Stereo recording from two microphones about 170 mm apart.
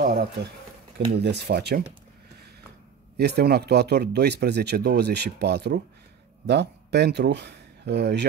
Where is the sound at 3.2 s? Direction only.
70° right (ahead or behind).